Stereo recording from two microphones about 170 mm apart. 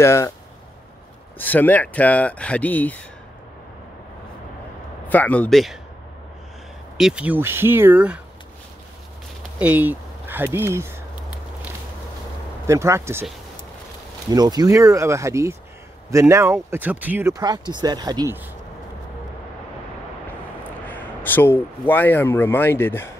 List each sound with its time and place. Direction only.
0.0 s speech: 15° left (ahead or behind)
1.4 s speech: 10° left (ahead or behind)
5.0 s speech: 10° left (ahead or behind)
7.0 s speech: 5° right (ahead or behind)
9.6 s a sound: 10° right (ahead or behind)
12.6 s speech: 15° right (ahead or behind)
14.3 s speech: 20° right (ahead or behind)
20.8 s speech: 10° left (ahead or behind)